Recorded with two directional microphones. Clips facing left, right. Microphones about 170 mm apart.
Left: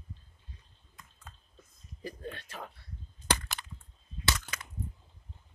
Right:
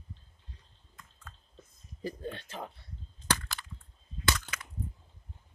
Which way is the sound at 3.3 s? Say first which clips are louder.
Left 1 dB; 15° left (ahead or behind).